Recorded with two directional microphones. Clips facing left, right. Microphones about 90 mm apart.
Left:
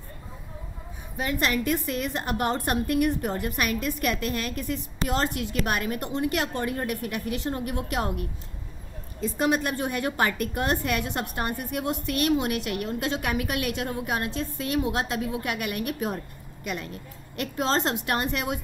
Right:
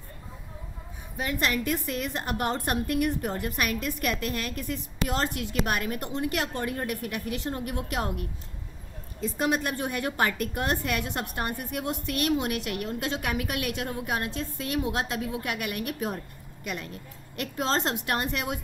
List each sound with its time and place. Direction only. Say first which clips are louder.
1.1 s a woman's voice: left 2 dB; 25° left (ahead or behind)
9.4 s a woman's voice: left 2 dB; 25° left (ahead or behind)
17.4 s a woman's voice: left 2 dB; 25° left (ahead or behind)